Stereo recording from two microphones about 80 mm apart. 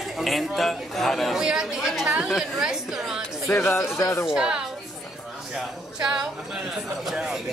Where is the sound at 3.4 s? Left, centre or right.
Left.